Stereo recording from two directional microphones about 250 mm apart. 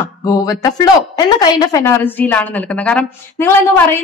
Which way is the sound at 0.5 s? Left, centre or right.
Centre.